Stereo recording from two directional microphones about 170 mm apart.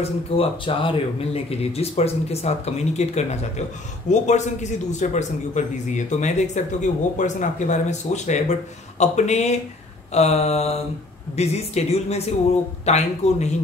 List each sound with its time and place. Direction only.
0.4 s a man's voice: 30° left (ahead or behind)